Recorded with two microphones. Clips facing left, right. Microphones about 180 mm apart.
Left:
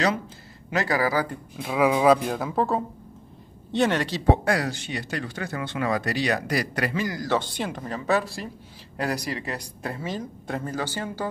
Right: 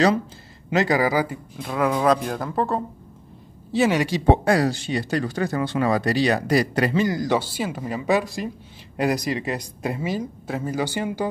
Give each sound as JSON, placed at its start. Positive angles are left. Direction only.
{"t": 0.7, "sound": "speech", "side_deg": -20}
{"t": 1.6, "sound": "speech", "side_deg": 5}
{"t": 4.3, "sound": "speech", "side_deg": -30}
{"t": 7.2, "sound": "speech", "side_deg": -5}